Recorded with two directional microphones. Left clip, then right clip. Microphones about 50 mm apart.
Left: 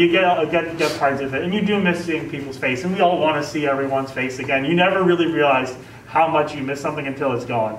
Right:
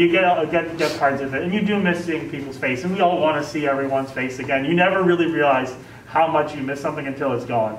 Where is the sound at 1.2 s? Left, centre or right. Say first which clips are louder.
Left 1 dB; centre.